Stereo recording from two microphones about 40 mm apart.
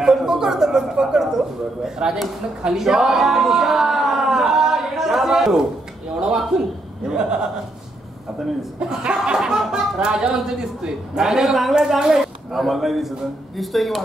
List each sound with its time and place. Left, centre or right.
0.0 s a sound: centre
6.5 s speech: centre
7.1 s speech: centre
8.8 s speech: centre
12.5 s a man's voice: centre